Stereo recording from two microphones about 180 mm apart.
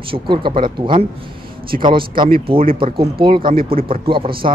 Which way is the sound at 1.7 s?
45° right (ahead or behind).